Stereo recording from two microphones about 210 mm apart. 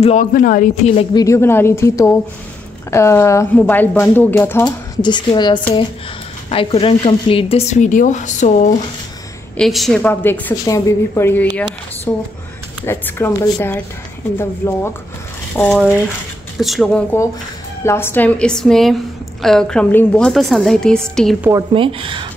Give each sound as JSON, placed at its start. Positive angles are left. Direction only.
{"t": 0.0, "sound": "speech", "side_deg": 35}
{"t": 1.1, "sound": "speech", "side_deg": 15}
{"t": 5.0, "sound": "a woman's voice", "side_deg": 20}
{"t": 9.6, "sound": "a woman's voice", "side_deg": 0}
{"t": 21.4, "sound": "a woman's voice", "side_deg": -10}
{"t": 21.7, "sound": "speech", "side_deg": -25}